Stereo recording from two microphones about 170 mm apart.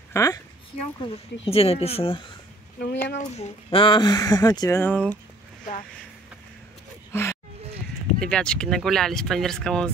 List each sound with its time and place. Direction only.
0.1 s a woman's voice: 20° left (ahead or behind)
1.0 s speech: 35° left (ahead or behind)
2.8 s speech: 80° left
3.2 s speech: 35° left (ahead or behind); by 5.1 s 10° left (ahead or behind)
7.1 s a sound: 15° left (ahead or behind)
8.2 s speech: 5° left (ahead or behind)